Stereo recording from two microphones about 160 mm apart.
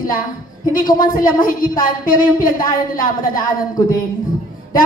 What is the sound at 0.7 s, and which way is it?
A woman's voice, 60° left (ahead or behind).